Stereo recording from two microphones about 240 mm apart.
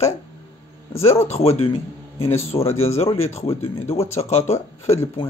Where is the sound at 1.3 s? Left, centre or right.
Left.